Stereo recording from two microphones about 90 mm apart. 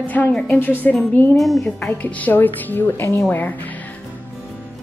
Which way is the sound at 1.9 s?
15° left (ahead or behind).